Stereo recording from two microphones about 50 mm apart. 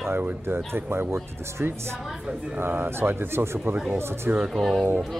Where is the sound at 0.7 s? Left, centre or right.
Right.